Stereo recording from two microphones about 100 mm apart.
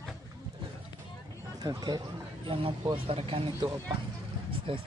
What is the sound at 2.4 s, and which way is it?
Speech, 65° right (ahead or behind).